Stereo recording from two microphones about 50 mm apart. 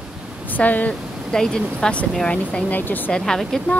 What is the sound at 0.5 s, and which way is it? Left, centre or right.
Speech, left.